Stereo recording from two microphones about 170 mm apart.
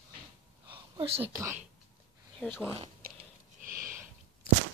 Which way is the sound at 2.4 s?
5° left (ahead or behind).